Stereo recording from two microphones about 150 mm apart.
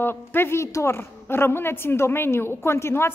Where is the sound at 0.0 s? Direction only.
15° left (ahead or behind).